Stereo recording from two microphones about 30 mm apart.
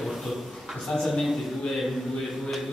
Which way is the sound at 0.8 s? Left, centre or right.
Centre.